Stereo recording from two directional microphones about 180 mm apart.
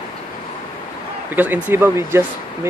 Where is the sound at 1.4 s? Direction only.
10° right (ahead or behind).